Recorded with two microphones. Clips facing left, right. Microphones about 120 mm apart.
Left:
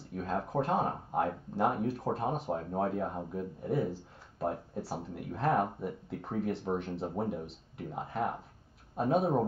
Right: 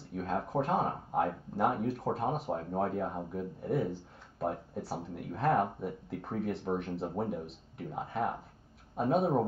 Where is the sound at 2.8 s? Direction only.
55° right (ahead or behind).